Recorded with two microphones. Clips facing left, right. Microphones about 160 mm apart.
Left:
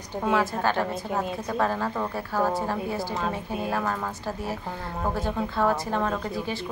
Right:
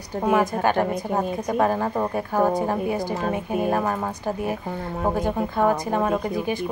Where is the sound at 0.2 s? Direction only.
15° right (ahead or behind).